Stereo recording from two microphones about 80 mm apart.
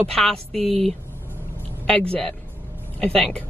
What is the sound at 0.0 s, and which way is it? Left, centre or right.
Speech, centre.